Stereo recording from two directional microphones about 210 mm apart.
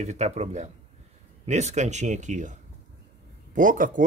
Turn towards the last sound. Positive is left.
turn(degrees=-40)  # may be behind; listen again after turning